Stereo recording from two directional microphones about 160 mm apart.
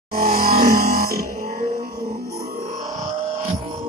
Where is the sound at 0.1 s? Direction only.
65° right (ahead or behind).